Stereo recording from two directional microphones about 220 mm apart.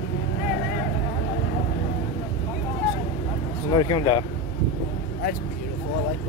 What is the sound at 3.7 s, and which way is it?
Speech, 20° left (ahead or behind).